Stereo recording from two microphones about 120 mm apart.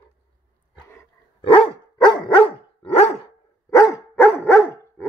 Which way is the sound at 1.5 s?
50° left (ahead or behind).